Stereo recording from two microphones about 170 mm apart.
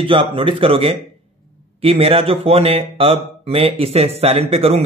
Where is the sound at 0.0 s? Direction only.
30° right (ahead or behind).